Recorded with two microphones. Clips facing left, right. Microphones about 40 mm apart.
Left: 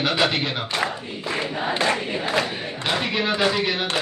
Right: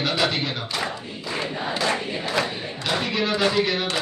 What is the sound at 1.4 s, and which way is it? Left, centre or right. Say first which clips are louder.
Crowd: even; left.